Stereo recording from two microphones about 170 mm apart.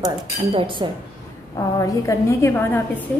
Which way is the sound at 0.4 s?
35° right (ahead or behind).